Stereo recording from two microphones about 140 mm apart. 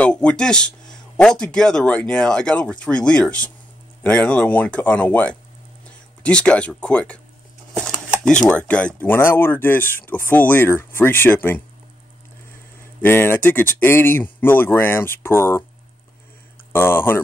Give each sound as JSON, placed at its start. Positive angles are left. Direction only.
{"t": 0.0, "sound": "speech", "side_deg": 10}
{"t": 8.3, "sound": "speech", "side_deg": 10}
{"t": 13.0, "sound": "speech", "side_deg": 15}
{"t": 16.7, "sound": "speech", "side_deg": 15}